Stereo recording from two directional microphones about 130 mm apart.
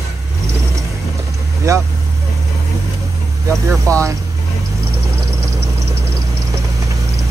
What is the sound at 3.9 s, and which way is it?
Speech, 25° right (ahead or behind).